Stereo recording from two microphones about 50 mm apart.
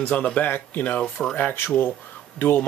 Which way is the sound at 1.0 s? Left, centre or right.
Centre.